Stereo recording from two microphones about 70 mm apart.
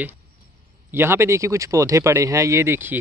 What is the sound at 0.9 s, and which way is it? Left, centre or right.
Speech, right.